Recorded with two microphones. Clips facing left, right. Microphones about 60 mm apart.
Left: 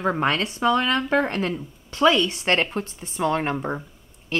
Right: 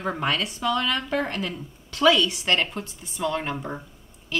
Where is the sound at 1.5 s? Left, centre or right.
Left.